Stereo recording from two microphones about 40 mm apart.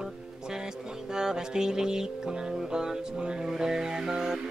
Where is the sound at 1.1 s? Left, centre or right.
Centre.